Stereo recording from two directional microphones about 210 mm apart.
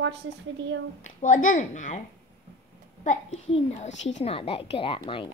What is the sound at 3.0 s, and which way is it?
A woman's voice, 30° left (ahead or behind).